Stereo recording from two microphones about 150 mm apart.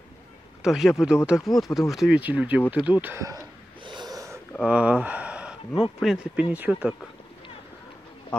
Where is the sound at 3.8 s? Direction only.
30° right (ahead or behind).